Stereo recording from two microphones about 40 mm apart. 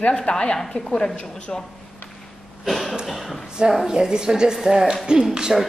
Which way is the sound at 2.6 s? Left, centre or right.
Centre.